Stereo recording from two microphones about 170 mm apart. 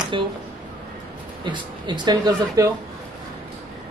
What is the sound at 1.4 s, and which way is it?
A man's voice, 25° right (ahead or behind).